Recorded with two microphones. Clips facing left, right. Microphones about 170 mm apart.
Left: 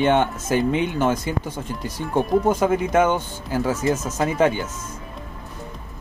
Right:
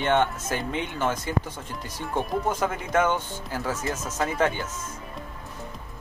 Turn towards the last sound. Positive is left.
turn(degrees=15)  # may be behind; listen again after turning